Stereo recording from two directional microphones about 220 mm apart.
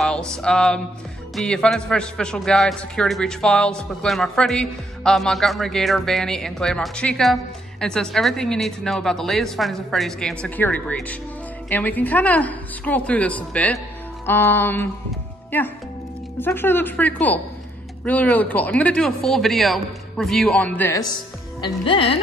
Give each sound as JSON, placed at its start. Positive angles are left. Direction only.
{"t": 0.3, "sound": "a man's voice", "side_deg": 5}
{"t": 21.8, "sound": "music", "side_deg": 25}